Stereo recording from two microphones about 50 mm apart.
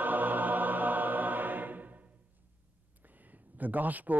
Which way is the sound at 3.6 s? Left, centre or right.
Right.